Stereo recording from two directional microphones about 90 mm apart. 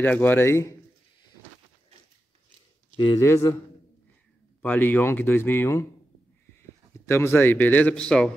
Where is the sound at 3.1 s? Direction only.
30° left (ahead or behind).